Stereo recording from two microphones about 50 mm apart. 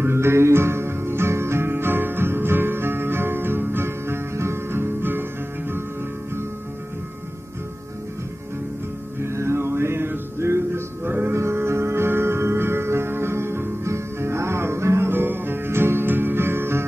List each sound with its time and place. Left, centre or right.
0.0 s music: right
9.2 s music: right
15.0 s music: right